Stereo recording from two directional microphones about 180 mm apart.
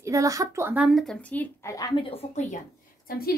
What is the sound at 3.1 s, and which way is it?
Speech, 55° left (ahead or behind).